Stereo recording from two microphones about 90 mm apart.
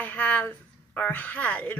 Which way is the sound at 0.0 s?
20° left (ahead or behind).